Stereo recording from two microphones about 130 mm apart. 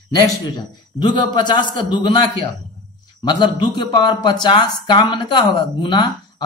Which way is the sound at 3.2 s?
35° left (ahead or behind).